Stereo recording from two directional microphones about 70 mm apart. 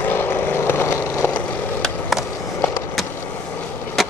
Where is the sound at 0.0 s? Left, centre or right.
Left.